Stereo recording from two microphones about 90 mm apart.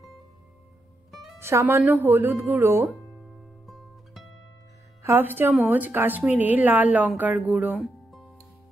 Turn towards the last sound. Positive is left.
turn(degrees=-20)  # may be behind; listen again after turning